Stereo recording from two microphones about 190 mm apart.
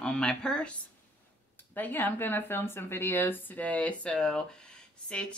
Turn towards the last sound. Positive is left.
turn(degrees=5)  # may be behind; listen again after turning